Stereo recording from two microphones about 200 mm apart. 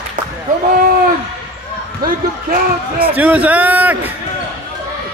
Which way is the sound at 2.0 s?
45° right (ahead or behind).